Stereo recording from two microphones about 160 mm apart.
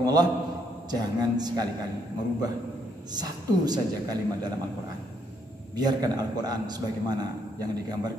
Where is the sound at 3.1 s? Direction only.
25° right (ahead or behind).